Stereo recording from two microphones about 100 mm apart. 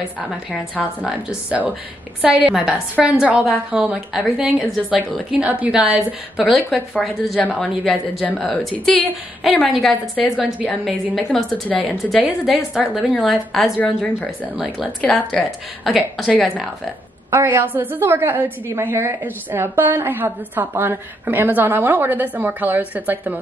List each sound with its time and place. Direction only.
0.7 s a woman's voice: 10° right (ahead or behind)
11.7 s a woman's voice: 15° left (ahead or behind)
12.1 s a woman's voice: centre (ahead or behind)
13.7 s a woman's voice: 15° left (ahead or behind)
15.9 s a woman's voice: centre (ahead or behind)
16.3 s a woman's voice: 10° left (ahead or behind)
17.3 s a woman's voice: 25° right (ahead or behind)